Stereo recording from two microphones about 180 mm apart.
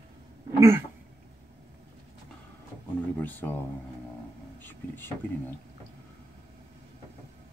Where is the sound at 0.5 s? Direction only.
15° right (ahead or behind).